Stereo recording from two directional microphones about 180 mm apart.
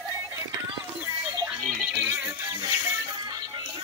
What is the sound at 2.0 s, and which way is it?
Music, 10° right (ahead or behind).